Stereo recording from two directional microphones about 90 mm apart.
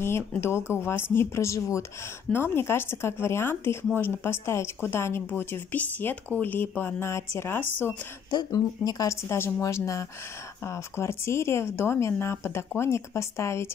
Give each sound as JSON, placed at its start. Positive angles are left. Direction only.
{"t": 0.3, "sound": "speech", "side_deg": 25}
{"t": 8.3, "sound": "speech", "side_deg": 50}